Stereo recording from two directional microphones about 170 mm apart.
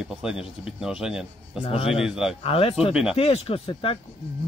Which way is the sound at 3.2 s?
35° left (ahead or behind).